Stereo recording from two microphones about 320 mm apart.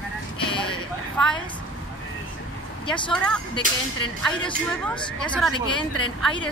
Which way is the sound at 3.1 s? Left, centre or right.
Centre.